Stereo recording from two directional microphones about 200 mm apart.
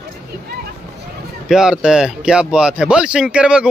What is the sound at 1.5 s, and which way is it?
Speech, 5° right (ahead or behind).